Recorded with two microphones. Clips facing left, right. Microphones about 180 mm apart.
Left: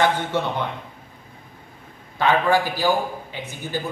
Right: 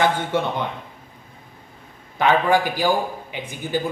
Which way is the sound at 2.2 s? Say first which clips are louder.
Right 1 dB; 15° right (ahead or behind).